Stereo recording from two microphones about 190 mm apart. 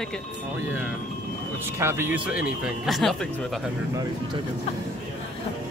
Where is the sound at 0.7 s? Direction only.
10° right (ahead or behind).